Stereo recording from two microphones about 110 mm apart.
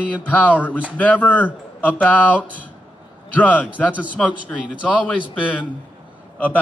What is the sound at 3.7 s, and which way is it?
Speech, 15° right (ahead or behind).